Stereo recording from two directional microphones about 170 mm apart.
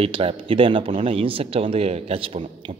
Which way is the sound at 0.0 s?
35° right (ahead or behind).